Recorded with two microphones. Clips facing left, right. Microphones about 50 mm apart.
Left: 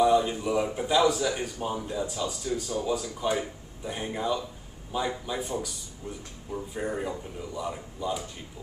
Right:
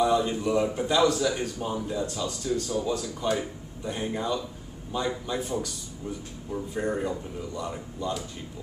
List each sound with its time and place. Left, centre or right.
0.0 s a man's voice: centre